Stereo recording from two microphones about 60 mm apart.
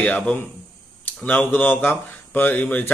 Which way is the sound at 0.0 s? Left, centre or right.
Centre.